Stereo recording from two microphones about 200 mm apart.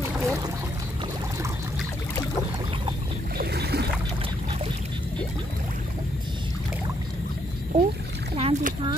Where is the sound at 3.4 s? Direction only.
55° right (ahead or behind).